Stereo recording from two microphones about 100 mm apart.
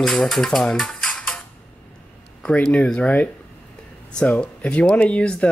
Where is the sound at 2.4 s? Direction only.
10° left (ahead or behind).